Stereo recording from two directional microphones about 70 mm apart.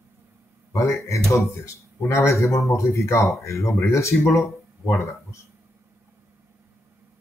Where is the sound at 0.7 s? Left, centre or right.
Left.